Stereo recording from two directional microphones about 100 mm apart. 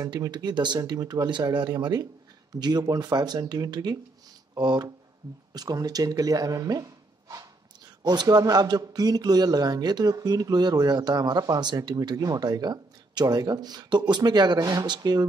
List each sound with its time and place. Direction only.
0.0 s a man's voice: 40° right (ahead or behind)